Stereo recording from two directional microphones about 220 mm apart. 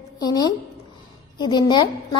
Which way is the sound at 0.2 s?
15° left (ahead or behind).